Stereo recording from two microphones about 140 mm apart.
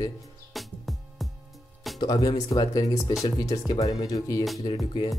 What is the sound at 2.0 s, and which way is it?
Speech, 25° left (ahead or behind).